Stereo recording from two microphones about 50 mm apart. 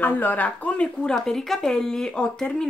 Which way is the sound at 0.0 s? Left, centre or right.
Left.